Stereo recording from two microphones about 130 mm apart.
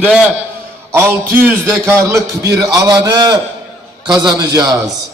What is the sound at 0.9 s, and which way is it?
A man's voice, 20° right (ahead or behind).